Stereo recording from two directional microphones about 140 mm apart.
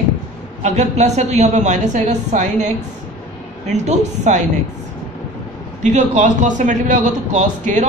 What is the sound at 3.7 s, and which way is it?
Speech, 55° right (ahead or behind).